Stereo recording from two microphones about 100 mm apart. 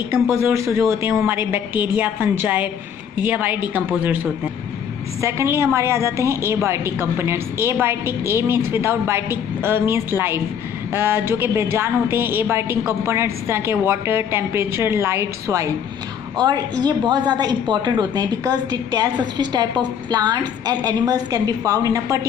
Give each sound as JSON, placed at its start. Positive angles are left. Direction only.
{"t": 0.3, "sound": "a woman's voice", "side_deg": -25}
{"t": 5.2, "sound": "a woman's voice", "side_deg": -30}
{"t": 16.3, "sound": "a woman's voice", "side_deg": -40}